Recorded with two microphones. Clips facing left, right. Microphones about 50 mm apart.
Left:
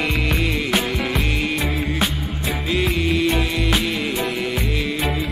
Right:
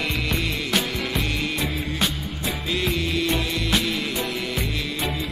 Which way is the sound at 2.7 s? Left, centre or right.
Centre.